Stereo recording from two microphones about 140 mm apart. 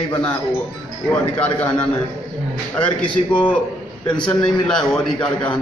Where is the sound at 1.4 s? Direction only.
10° left (ahead or behind).